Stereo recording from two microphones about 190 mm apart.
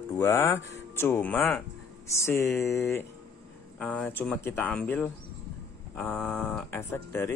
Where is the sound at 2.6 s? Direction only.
15° left (ahead or behind).